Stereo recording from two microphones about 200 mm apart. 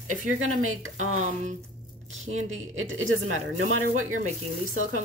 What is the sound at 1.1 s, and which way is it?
Speech, 40° right (ahead or behind).